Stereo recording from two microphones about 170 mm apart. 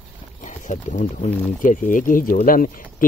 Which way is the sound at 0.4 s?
45° left (ahead or behind).